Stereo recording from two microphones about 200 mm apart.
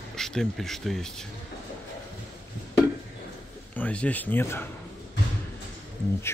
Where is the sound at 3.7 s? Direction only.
5° left (ahead or behind).